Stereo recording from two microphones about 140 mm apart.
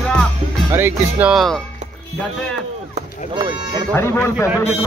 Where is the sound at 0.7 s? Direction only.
15° right (ahead or behind).